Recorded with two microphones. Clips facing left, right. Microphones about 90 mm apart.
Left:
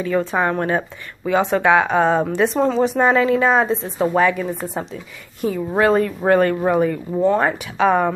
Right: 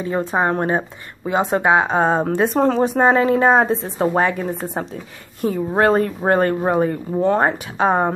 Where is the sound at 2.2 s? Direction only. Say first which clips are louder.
Right 1 dB; 50° right (ahead or behind).